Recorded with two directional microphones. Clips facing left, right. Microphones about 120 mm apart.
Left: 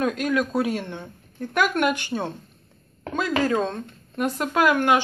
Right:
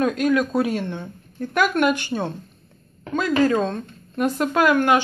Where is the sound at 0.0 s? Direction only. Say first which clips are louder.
Right 4 dB; centre (ahead or behind).